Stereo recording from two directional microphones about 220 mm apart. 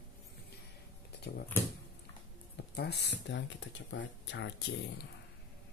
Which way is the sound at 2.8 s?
50° left (ahead or behind).